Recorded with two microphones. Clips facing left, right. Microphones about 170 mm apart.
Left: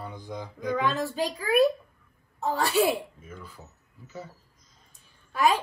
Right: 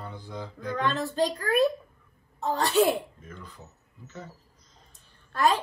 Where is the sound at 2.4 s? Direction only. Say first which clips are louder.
Even; 20° right (ahead or behind).